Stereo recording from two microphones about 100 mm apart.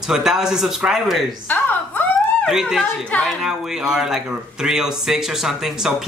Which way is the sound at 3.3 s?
5° right (ahead or behind).